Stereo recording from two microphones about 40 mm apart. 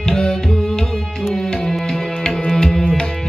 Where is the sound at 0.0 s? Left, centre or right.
Centre.